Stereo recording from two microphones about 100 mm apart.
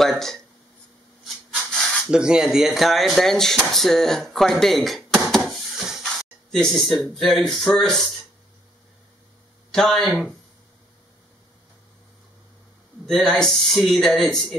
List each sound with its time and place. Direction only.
0.0 s speech: 5° left (ahead or behind)
1.7 s a sound: 5° left (ahead or behind)
2.0 s speech: 10° right (ahead or behind)
5.3 s a sound: centre (ahead or behind)
6.0 s speech: 5° left (ahead or behind)
9.7 s speech: 5° left (ahead or behind)
13.0 s speech: 5° left (ahead or behind)